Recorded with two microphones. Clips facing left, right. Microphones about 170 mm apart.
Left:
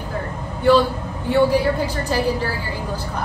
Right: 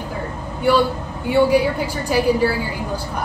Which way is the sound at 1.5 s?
10° right (ahead or behind).